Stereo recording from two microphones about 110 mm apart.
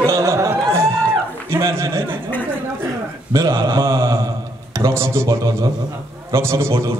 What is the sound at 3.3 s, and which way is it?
Speech, 30° right (ahead or behind).